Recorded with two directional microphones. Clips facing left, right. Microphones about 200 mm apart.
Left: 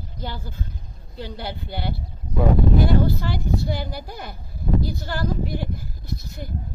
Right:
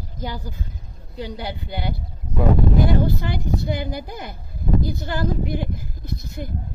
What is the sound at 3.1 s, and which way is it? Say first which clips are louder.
A woman's voice: even; 20° right (ahead or behind).